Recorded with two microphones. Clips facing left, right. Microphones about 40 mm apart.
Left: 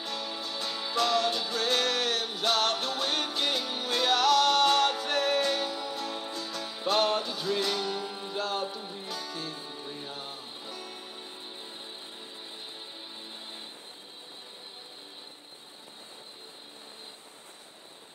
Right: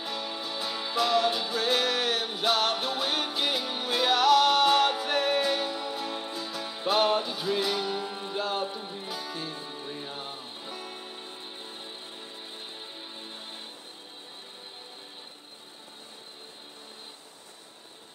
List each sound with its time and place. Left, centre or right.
0.0 s music: centre
13.4 s music: right